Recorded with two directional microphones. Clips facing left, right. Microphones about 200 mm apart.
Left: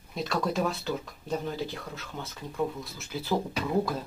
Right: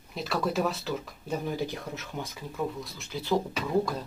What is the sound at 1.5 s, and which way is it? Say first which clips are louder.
Speech: right 2 dB; 15° right (ahead or behind).